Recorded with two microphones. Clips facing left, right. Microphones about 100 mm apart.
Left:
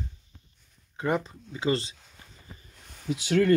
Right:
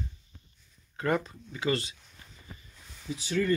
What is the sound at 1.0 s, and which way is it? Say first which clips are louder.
Speech: left 1 dB; 15° left (ahead or behind).